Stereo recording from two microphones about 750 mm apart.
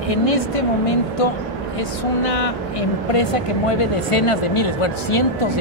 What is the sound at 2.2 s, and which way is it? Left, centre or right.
Speech, left.